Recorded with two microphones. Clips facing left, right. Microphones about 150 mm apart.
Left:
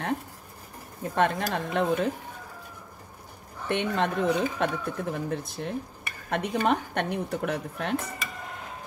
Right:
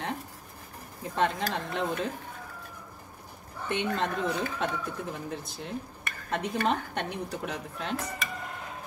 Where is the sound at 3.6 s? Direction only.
60° left (ahead or behind).